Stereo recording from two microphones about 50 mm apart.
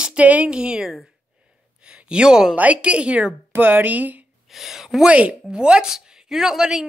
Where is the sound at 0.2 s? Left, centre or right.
Right; by 2.5 s centre.